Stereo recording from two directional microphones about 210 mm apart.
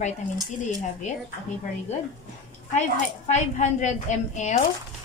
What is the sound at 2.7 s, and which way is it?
A woman's voice, 35° left (ahead or behind).